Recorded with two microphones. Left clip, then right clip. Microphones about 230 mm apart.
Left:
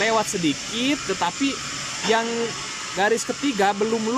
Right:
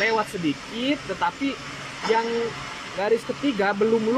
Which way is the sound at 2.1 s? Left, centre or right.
Centre.